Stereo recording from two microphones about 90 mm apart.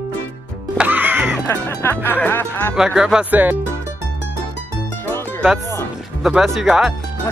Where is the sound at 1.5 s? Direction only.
30° left (ahead or behind).